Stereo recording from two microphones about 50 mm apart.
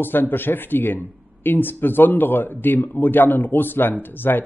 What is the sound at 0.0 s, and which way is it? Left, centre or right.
A woman's voice, left.